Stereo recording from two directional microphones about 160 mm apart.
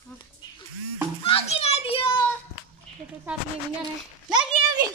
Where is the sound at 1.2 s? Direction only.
35° left (ahead or behind).